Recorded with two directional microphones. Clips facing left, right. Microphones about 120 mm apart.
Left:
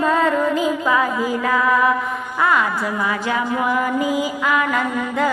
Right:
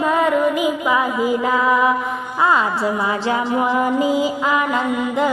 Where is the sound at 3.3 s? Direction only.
25° right (ahead or behind).